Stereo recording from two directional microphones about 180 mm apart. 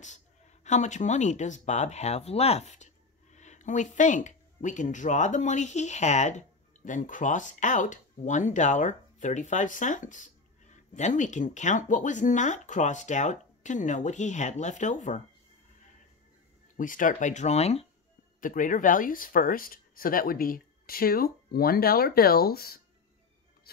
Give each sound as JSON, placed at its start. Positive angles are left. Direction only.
{"t": 0.7, "sound": "speech", "side_deg": 40}
{"t": 16.7, "sound": "speech", "side_deg": 45}
{"t": 18.4, "sound": "speech", "side_deg": 50}